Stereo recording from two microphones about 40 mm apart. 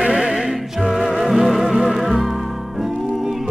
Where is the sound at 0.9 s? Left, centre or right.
Centre.